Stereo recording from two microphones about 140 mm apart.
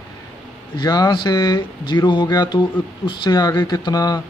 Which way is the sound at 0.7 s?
25° left (ahead or behind).